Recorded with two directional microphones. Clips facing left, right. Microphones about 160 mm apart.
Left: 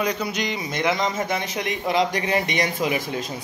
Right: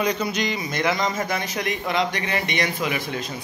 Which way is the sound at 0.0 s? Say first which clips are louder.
Right 1 dB; 5° left (ahead or behind).